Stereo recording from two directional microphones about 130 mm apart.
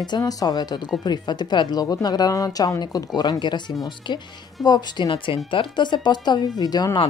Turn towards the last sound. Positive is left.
turn(degrees=30)  # may be behind; listen again after turning